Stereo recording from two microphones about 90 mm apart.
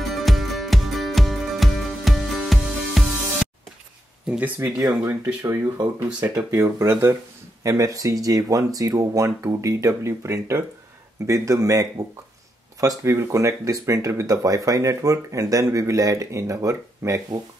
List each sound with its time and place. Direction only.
0.0 s music: centre (ahead or behind)
4.3 s speech: 20° right (ahead or behind)
4.6 s speech: 30° right (ahead or behind)